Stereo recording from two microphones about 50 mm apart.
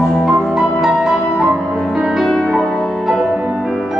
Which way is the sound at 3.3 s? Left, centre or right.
Centre.